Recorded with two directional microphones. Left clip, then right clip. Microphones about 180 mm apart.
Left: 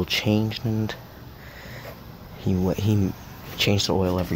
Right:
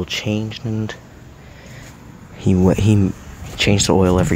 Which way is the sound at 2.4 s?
20° right (ahead or behind).